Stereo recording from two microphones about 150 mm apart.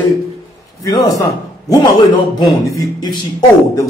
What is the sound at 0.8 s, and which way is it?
A man's voice, 25° left (ahead or behind).